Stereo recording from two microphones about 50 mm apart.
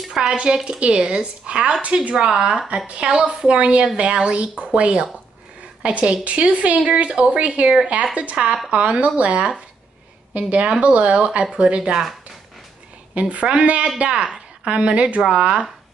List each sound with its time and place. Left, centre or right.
0.1 s speech: centre
3.4 s a woman's voice: right
13.1 s speech: right